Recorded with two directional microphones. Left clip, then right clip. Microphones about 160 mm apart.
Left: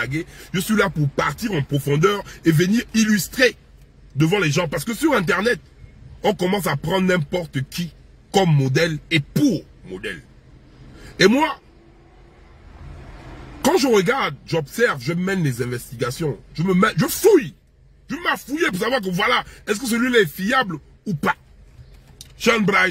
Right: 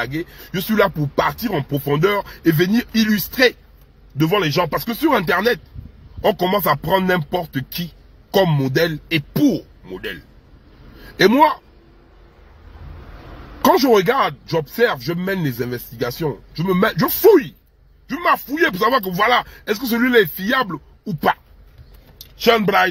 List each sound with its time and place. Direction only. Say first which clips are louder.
0.1 s a man's voice: right 1 dB; centre (ahead or behind)
13.7 s a man's voice: even; centre (ahead or behind)
22.4 s a man's voice: right 3 dB; centre (ahead or behind)